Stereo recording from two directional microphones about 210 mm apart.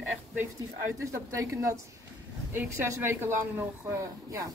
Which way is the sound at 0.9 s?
15° right (ahead or behind).